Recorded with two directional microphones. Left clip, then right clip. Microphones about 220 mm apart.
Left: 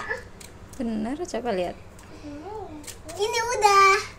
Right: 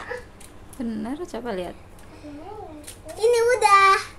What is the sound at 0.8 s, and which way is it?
Speech, centre (ahead or behind).